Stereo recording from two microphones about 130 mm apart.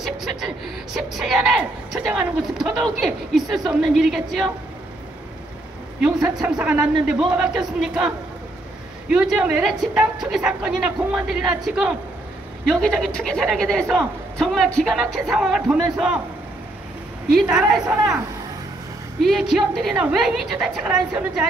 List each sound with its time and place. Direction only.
0.0 s a sound: centre (ahead or behind)
0.9 s a woman's voice: 5° right (ahead or behind)
6.4 s speech: 10° right (ahead or behind)
9.1 s a woman's voice: 10° right (ahead or behind)
12.6 s a woman's voice: 5° left (ahead or behind)
17.5 s speech: 5° right (ahead or behind)
17.8 s speech: 25° right (ahead or behind)
19.2 s a woman's voice: centre (ahead or behind)